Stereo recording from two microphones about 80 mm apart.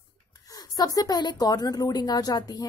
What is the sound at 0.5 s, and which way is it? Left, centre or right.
Speech, left.